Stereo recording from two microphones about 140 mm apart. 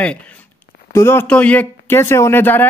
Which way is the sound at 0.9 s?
15° left (ahead or behind).